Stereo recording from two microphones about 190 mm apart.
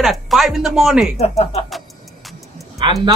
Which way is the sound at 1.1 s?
35° left (ahead or behind).